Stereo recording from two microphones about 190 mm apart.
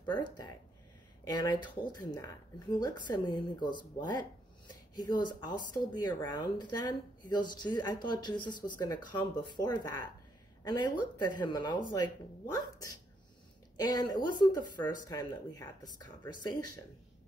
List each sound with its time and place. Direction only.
0.1 s speech: 25° left (ahead or behind)